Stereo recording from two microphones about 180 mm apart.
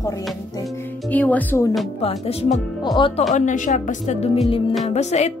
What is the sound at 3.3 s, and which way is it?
A woman's voice, 45° left (ahead or behind).